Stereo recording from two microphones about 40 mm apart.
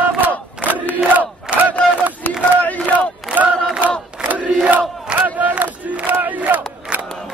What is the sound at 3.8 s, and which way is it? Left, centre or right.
Crowd, right.